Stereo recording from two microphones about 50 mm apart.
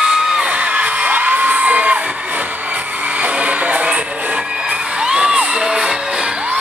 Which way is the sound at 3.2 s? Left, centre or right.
Right.